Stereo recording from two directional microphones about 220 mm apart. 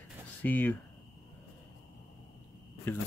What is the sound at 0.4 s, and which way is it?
Speech, 10° left (ahead or behind).